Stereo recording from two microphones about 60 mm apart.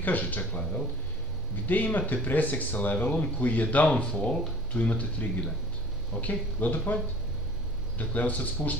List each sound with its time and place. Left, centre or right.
0.0 s speech: left
8.0 s speech: left